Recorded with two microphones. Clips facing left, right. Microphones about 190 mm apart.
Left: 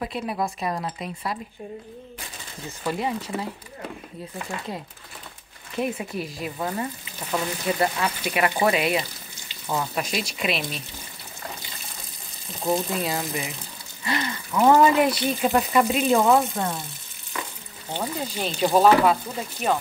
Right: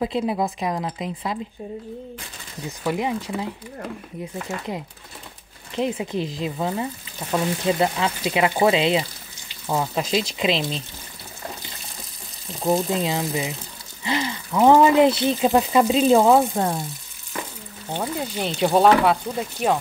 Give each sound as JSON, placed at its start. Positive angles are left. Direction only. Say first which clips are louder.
{"t": 0.0, "sound": "speech", "louder": "right 5 dB", "side_deg": -20}
{"t": 2.8, "sound": "speech", "louder": "right 3 dB", "side_deg": -10}
{"t": 4.5, "sound": "speech", "louder": "right 3 dB", "side_deg": -20}
{"t": 12.6, "sound": "speech", "louder": "right 3 dB", "side_deg": -15}
{"t": 15.0, "sound": "speech", "louder": "right 5 dB", "side_deg": -25}
{"t": 15.9, "sound": "speech", "louder": "right 5 dB", "side_deg": -30}
{"t": 17.9, "sound": "speech", "louder": "right 2 dB", "side_deg": -15}